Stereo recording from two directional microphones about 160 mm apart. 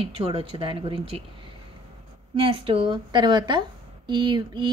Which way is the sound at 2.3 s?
35° right (ahead or behind).